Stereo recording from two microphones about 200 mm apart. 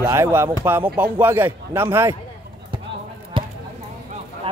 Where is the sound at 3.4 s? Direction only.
25° right (ahead or behind).